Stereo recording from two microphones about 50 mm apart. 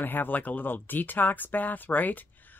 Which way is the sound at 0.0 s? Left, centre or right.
Left.